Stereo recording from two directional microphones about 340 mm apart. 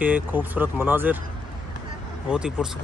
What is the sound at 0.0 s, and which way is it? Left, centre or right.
Speech, centre.